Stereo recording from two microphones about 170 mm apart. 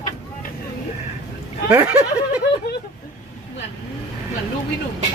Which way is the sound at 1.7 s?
10° right (ahead or behind).